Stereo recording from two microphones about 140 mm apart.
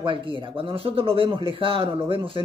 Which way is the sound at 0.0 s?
40° right (ahead or behind).